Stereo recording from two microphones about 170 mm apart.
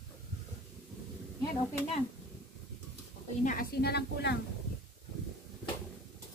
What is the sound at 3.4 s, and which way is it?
Speech, 60° left (ahead or behind).